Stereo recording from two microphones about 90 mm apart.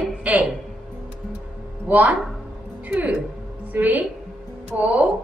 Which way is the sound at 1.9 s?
15° right (ahead or behind).